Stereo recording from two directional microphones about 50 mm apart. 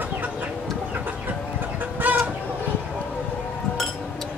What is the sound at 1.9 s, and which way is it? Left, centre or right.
Chicken, right.